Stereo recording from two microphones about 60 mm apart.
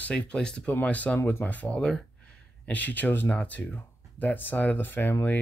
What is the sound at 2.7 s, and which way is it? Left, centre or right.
Speech, left.